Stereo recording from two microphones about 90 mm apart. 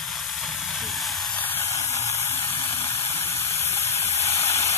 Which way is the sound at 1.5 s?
30° left (ahead or behind).